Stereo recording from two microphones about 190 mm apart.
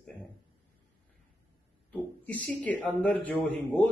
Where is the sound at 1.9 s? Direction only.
10° left (ahead or behind).